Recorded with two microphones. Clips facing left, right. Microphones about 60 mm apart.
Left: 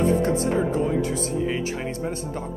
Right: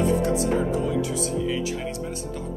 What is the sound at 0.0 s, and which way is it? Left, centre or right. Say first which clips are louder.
Speech: left 1 dB; left.